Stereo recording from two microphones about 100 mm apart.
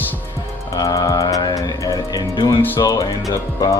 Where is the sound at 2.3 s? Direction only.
55° left (ahead or behind).